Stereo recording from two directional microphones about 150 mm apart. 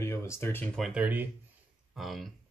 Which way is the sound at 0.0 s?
20° left (ahead or behind).